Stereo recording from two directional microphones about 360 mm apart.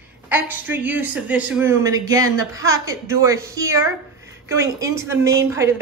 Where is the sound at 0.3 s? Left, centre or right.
Centre.